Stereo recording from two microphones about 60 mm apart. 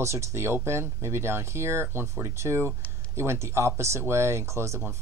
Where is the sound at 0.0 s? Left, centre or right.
Right.